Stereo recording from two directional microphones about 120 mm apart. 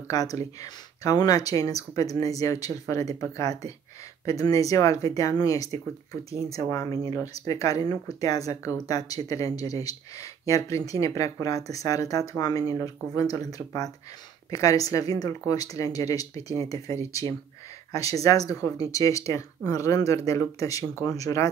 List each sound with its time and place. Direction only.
0.1 s speech: 30° left (ahead or behind)